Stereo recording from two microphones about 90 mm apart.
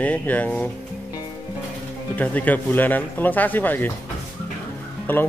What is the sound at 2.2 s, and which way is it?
Speech, 20° left (ahead or behind).